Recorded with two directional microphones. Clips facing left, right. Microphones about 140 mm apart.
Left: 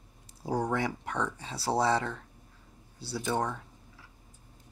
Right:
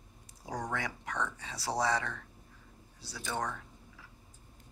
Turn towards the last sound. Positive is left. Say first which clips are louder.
# left 8 dB
turn(degrees=30)  # may be behind; listen again after turning